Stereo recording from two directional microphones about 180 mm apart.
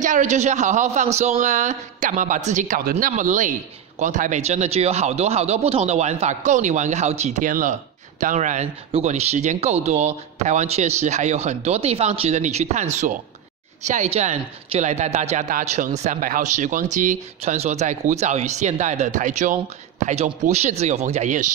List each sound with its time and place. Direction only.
0.0 s a man's voice: 45° right (ahead or behind)